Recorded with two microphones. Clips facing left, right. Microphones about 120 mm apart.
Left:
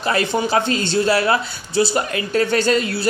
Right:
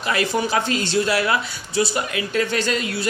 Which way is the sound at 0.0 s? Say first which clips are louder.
Left 2 dB; 30° left (ahead or behind).